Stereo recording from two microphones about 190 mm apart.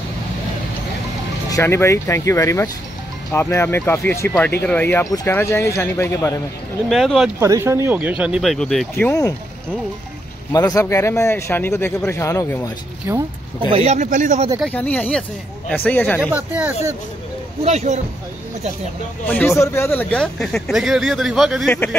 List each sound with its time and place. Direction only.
1.5 s speech: 15° left (ahead or behind)
6.9 s speech: centre (ahead or behind)
7.3 s speech: 15° right (ahead or behind); by 8.8 s centre (ahead or behind)
9.0 s speech: 15° left (ahead or behind)
10.5 s speech: 15° left (ahead or behind)
13.1 s speech: 10° right (ahead or behind)
13.7 s speech: 35° right (ahead or behind)
14.6 s speech: 10° left (ahead or behind)
16.2 s speech: 5° right (ahead or behind)
17.6 s speech: 35° right (ahead or behind)
19.2 s speech: 10° left (ahead or behind)